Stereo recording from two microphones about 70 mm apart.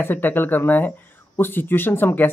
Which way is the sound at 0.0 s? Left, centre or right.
Left.